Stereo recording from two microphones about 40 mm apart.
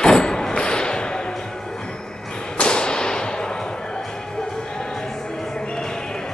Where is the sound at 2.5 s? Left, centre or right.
Left.